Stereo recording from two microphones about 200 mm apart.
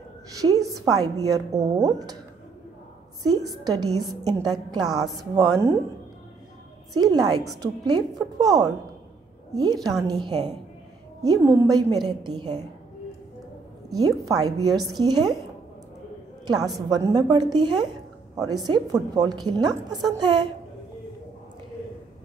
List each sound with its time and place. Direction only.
0.4 s a woman's voice: 15° right (ahead or behind)
3.3 s a woman's voice: 20° right (ahead or behind)
6.9 s a woman's voice: 20° right (ahead or behind)
11.2 s a woman's voice: 15° right (ahead or behind)
13.9 s a woman's voice: 20° right (ahead or behind)
16.9 s a woman's voice: 20° right (ahead or behind)